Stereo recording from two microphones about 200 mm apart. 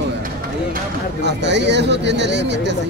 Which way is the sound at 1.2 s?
60° right (ahead or behind).